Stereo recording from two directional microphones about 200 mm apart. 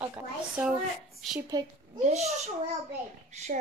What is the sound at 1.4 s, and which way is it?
Speech, 20° right (ahead or behind).